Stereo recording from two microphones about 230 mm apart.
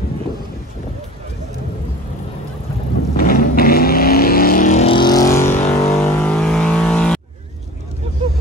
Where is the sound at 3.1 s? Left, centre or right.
Left; by 5.3 s centre.